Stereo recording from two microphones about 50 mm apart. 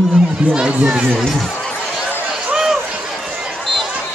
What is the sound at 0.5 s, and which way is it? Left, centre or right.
Speech, centre.